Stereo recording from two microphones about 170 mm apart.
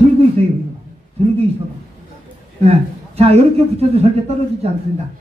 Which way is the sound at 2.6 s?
40° right (ahead or behind).